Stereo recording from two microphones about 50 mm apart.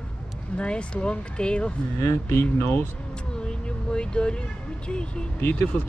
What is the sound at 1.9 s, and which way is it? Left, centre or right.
Speech, left.